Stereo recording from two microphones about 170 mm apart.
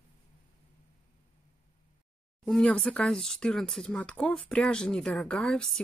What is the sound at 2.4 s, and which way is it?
A woman's voice, 5° left (ahead or behind).